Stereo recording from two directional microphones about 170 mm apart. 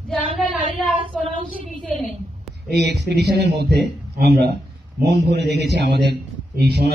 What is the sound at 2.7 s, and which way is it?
A man's voice, 75° right (ahead or behind).